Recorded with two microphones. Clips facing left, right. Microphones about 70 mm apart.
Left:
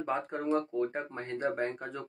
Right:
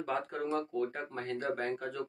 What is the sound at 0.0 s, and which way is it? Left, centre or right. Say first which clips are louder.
Speech: left 2 dB; centre.